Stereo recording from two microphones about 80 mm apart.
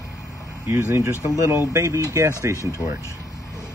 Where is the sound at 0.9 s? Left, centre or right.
Right.